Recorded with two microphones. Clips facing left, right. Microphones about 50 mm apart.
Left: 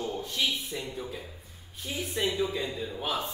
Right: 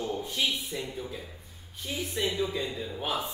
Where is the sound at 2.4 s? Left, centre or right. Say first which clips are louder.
Even; centre.